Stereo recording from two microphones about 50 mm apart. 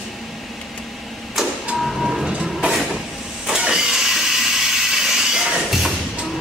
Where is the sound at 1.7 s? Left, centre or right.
Centre.